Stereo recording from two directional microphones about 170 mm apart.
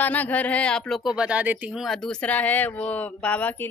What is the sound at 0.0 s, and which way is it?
Speech, 10° left (ahead or behind).